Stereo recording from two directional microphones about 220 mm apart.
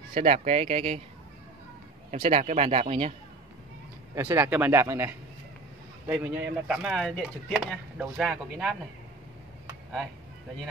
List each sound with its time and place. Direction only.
0.1 s a man's voice: 30° right (ahead or behind)
2.0 s a man's voice: 30° right (ahead or behind)
4.1 s a man's voice: 15° right (ahead or behind)